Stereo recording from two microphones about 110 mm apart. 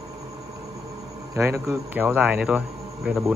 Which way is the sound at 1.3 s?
25° right (ahead or behind).